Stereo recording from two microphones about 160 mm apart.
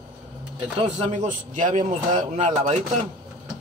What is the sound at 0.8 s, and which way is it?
A man's voice, 50° right (ahead or behind).